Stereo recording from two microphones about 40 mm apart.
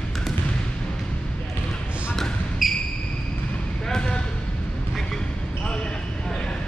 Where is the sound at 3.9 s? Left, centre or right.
Centre.